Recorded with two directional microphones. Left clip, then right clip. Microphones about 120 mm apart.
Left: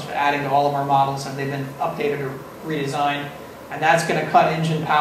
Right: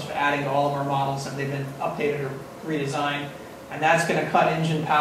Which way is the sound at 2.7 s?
25° left (ahead or behind).